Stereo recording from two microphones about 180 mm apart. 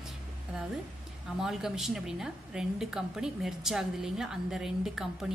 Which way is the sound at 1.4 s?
Centre (ahead or behind).